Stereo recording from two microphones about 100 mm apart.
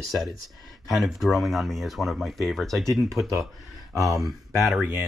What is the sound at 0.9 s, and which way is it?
Speech, centre (ahead or behind).